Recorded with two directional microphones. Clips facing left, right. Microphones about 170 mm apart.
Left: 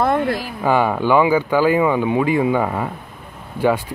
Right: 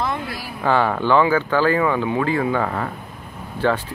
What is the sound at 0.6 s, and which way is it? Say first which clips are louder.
Speech: even; 10° left (ahead or behind).